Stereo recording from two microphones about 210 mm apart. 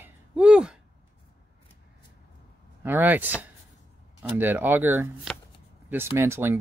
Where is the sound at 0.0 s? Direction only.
5° right (ahead or behind).